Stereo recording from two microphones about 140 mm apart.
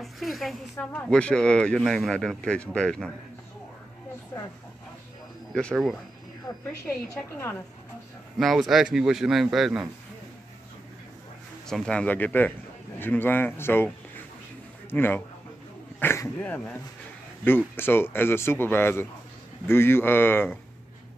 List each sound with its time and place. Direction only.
0.0 s a man's voice: centre (ahead or behind)
5.5 s speech: 5° left (ahead or behind)
6.9 s speech: 15° left (ahead or behind)
8.4 s a man's voice: centre (ahead or behind)
11.6 s speech: 5° left (ahead or behind)
14.9 s speech: 15° left (ahead or behind)